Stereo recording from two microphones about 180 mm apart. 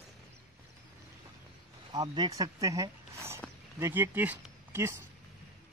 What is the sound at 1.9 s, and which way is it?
Speech, 25° right (ahead or behind).